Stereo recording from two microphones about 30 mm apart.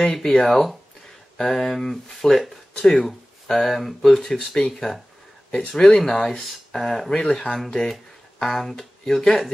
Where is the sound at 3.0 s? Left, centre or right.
Centre.